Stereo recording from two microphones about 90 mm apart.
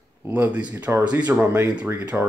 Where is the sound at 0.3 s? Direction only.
15° right (ahead or behind).